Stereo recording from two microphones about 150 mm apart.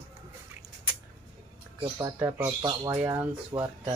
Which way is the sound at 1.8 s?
30° right (ahead or behind).